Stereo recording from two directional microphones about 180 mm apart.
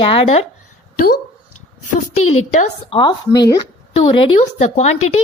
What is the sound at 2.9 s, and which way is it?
Speech, 25° left (ahead or behind).